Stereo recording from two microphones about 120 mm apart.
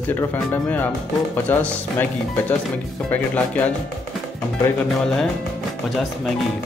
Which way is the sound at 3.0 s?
10° left (ahead or behind).